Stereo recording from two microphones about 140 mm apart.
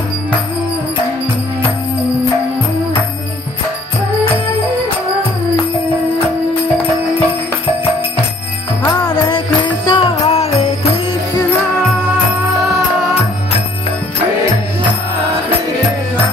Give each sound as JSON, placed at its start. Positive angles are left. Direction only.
{"t": 8.8, "sound": "music", "side_deg": 30}